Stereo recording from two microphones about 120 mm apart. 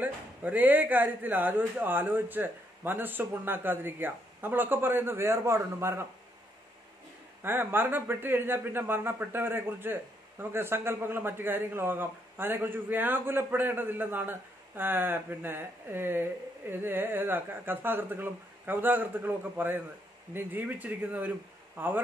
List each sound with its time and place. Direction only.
0.0 s a man's voice: 15° right (ahead or behind)
7.4 s a man's voice: 20° right (ahead or behind)